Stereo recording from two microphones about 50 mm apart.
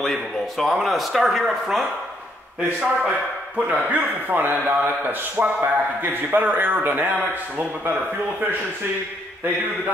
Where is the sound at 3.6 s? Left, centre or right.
Right.